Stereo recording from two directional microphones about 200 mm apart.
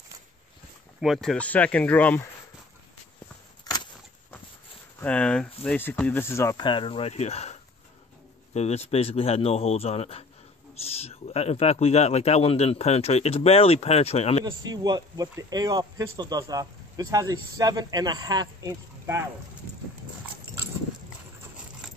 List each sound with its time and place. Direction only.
1.0 s speech: centre (ahead or behind)
3.6 s a sound: 20° left (ahead or behind)
5.0 s speech: 5° left (ahead or behind); by 7.5 s 30° left (ahead or behind)
8.5 s speech: 30° left (ahead or behind)
14.4 s speech: 20° right (ahead or behind)